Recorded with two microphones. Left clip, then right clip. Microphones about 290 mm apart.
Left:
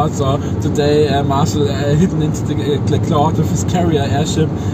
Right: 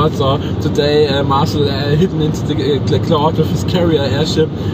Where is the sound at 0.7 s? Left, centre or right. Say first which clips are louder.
Right 1 dB; centre.